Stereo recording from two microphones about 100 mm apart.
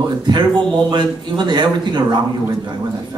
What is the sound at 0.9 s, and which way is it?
Speech, 50° right (ahead or behind).